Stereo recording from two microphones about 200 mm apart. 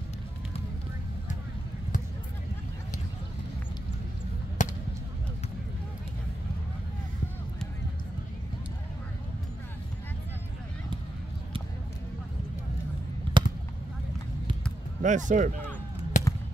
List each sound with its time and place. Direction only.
4.6 s a sound: 40° left (ahead or behind)
13.4 s basketball bounce: 25° right (ahead or behind)
15.0 s speech: 40° right (ahead or behind)
16.1 s basketball bounce: 40° left (ahead or behind)